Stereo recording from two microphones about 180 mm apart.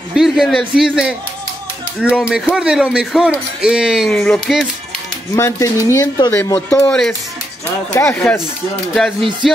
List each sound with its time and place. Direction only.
0.1 s speech: centre (ahead or behind)
5.3 s speech: 15° left (ahead or behind)
6.8 s speech: 5° left (ahead or behind)
9.4 s speech: centre (ahead or behind)